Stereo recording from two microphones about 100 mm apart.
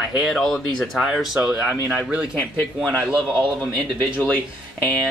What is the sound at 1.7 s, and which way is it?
Speech, 15° right (ahead or behind).